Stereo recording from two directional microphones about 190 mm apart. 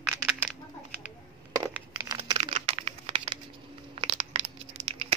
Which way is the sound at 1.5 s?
20° right (ahead or behind).